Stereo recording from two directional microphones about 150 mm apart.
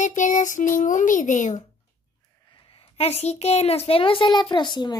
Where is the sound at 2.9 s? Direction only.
45° left (ahead or behind).